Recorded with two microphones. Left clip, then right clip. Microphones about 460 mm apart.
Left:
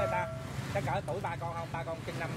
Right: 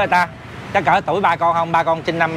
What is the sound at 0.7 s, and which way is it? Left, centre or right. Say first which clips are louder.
Speech: right 19 dB; right.